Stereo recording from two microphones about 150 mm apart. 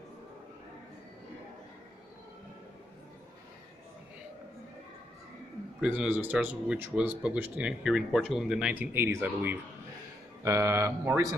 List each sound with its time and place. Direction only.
5.8 s speech: 10° right (ahead or behind)